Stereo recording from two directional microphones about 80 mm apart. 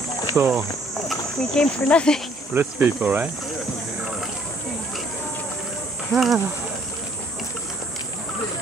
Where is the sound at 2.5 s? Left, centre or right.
Right.